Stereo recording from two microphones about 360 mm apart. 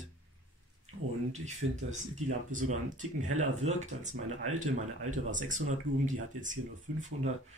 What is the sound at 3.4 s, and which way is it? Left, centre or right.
Speech, centre.